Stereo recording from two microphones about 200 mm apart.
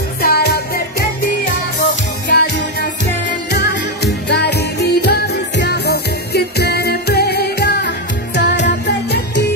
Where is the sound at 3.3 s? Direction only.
55° left (ahead or behind).